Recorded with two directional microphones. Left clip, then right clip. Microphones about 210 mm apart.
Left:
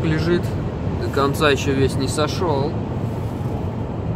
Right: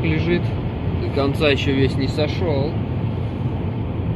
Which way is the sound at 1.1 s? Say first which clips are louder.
Left 1 dB; 10° left (ahead or behind).